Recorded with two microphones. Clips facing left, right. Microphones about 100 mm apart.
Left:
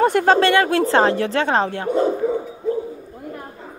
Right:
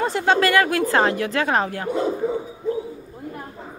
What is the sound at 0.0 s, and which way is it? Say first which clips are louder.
Speech: left 7 dB; 55° left (ahead or behind).